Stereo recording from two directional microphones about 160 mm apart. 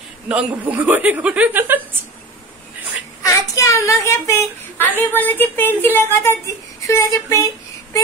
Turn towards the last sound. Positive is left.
turn(degrees=20)  # may be behind; listen again after turning